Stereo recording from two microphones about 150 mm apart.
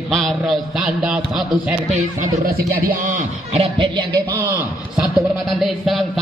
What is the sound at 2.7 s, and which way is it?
Speech, 75° right (ahead or behind).